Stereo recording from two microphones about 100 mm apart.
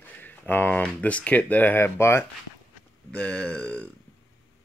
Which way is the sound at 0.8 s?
15° left (ahead or behind).